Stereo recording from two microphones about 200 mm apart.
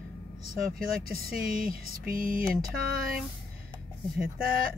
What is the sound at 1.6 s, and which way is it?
Music, 45° right (ahead or behind).